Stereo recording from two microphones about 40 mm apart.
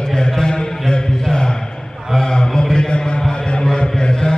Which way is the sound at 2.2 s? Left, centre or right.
Centre.